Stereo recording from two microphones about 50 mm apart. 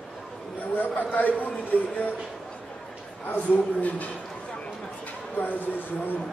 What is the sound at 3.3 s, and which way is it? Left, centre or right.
Speech, left.